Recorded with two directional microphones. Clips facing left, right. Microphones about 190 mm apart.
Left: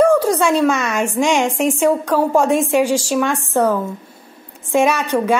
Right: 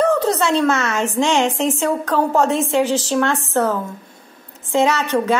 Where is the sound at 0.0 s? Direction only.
10° left (ahead or behind).